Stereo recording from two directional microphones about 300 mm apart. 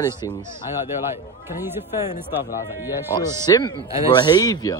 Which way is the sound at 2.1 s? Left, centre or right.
Left.